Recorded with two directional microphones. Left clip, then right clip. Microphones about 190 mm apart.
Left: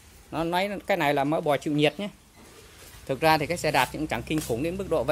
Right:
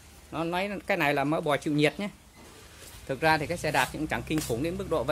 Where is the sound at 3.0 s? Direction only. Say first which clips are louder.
Left 3 dB; 25° left (ahead or behind).